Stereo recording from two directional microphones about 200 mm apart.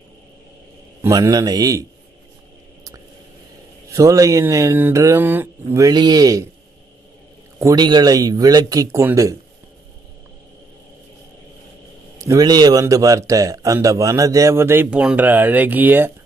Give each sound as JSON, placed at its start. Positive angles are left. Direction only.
{"t": 1.0, "sound": "a man's voice", "side_deg": -15}
{"t": 3.9, "sound": "a man's voice", "side_deg": -15}
{"t": 7.5, "sound": "a man's voice", "side_deg": -20}
{"t": 12.2, "sound": "a man's voice", "side_deg": -15}